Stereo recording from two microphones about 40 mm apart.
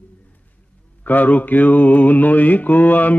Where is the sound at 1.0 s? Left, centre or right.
Left.